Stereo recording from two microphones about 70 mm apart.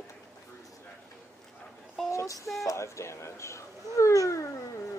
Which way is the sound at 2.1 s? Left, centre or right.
Left.